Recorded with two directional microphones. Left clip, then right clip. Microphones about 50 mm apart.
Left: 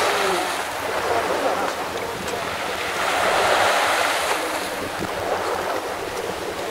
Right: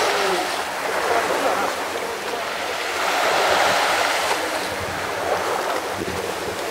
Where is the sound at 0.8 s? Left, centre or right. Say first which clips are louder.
Right 2 dB; right.